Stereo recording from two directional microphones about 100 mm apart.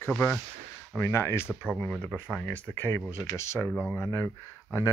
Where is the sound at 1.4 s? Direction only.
Centre (ahead or behind).